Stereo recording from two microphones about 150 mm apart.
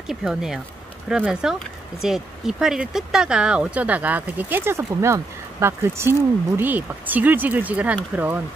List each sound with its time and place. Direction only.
0.1 s speech: 5° right (ahead or behind)